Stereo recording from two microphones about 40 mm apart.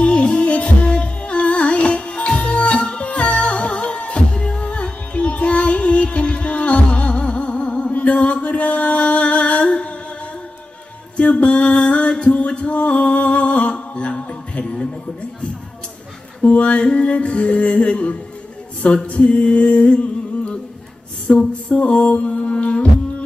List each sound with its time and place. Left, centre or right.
0.0 s music: left
11.1 s music: left
16.4 s music: left
21.3 s music: left